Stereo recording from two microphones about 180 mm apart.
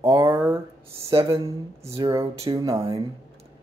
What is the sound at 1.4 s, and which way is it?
Speech, 15° right (ahead or behind).